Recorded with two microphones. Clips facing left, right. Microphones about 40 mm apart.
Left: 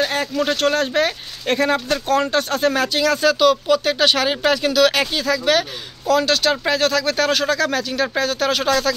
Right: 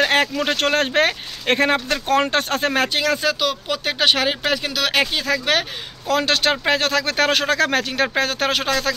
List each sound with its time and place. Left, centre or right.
0.0 s a sound: right
0.4 s speech: right
3.2 s speech: centre
5.1 s speech: right
8.5 s speech: right